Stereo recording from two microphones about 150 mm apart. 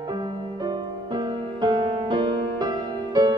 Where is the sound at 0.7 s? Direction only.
30° right (ahead or behind).